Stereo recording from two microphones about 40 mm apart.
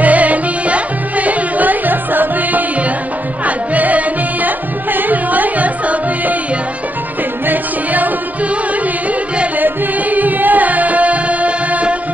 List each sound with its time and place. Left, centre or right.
0.0 s music: right
7.4 s music: right
9.6 s music: right